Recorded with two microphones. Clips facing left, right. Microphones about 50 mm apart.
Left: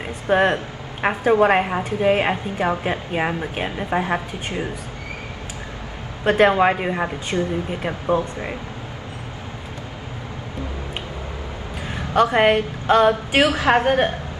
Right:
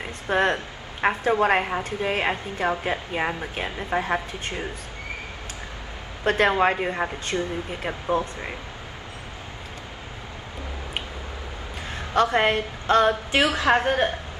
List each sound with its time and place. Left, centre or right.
0.0 s a woman's voice: centre
6.2 s a woman's voice: centre
12.1 s a woman's voice: centre
13.4 s a woman's voice: left